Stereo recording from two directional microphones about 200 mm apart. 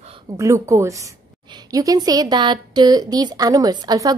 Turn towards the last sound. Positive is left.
turn(degrees=-20)  # may be behind; listen again after turning